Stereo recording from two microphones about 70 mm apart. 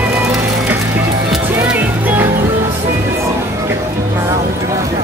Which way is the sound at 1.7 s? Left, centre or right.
Right.